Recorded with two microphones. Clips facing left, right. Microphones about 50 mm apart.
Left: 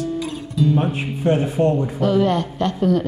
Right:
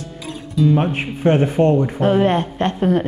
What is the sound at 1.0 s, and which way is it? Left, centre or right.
Speech, right.